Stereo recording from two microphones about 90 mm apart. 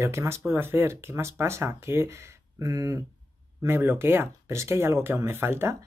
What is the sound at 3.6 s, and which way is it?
Speech, 25° right (ahead or behind).